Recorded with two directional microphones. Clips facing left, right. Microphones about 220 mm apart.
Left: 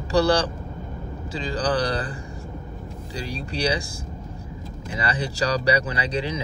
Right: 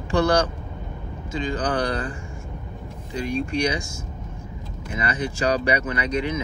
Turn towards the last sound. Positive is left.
turn(degrees=30)  # may be behind; listen again after turning